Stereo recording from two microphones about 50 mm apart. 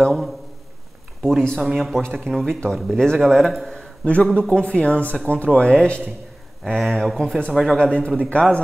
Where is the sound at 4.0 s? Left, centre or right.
Left.